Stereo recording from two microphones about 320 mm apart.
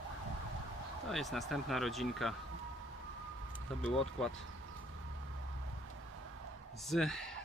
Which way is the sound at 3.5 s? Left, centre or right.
Centre.